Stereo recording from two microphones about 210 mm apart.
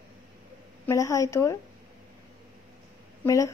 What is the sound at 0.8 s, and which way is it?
Speech, 15° left (ahead or behind).